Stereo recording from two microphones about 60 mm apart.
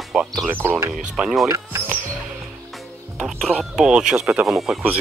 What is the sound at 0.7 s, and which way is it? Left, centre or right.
Speech, right.